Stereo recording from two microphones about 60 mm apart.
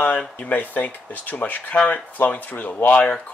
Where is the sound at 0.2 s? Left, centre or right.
Left.